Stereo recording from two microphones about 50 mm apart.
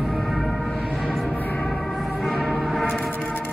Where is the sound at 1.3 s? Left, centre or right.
Left.